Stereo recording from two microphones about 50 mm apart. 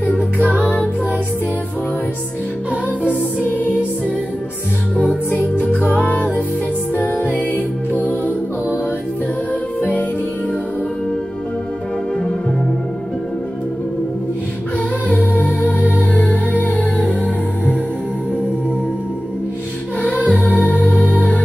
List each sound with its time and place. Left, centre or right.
0.0 s music: left
3.4 s music: left
5.4 s music: left
15.3 s music: left
20.0 s music: left